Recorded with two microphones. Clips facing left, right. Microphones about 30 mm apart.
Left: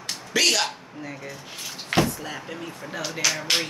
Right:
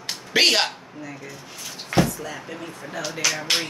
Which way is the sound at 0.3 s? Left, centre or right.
Right.